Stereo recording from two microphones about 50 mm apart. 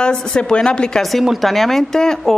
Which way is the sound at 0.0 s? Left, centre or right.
Centre.